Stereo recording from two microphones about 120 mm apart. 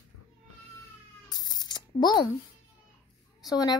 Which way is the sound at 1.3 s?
35° left (ahead or behind).